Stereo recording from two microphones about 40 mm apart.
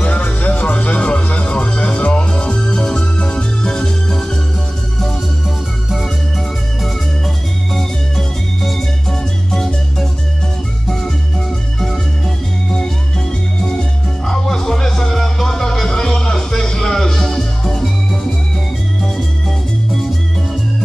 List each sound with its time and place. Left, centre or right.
0.0 s music: left
13.6 s music: centre